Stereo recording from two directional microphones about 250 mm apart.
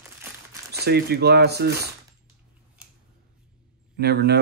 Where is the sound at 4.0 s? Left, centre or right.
Right.